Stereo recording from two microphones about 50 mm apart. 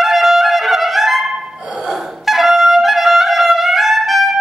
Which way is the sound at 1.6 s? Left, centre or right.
Right.